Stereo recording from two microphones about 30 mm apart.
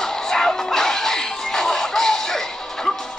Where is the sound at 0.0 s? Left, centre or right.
Centre.